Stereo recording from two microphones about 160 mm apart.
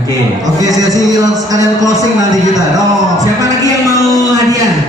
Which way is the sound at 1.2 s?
25° right (ahead or behind).